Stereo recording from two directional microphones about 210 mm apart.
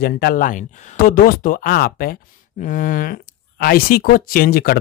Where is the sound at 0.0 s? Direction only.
45° left (ahead or behind).